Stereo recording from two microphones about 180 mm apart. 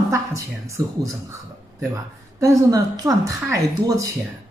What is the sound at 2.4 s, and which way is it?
Speech, 20° right (ahead or behind).